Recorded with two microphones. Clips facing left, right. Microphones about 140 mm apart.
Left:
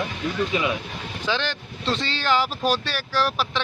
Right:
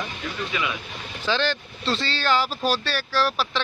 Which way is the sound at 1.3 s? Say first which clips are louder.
Right 3 dB; 15° left (ahead or behind).